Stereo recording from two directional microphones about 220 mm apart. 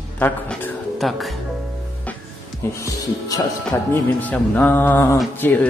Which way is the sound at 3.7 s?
10° left (ahead or behind).